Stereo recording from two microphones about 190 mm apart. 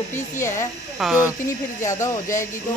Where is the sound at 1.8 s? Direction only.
15° left (ahead or behind).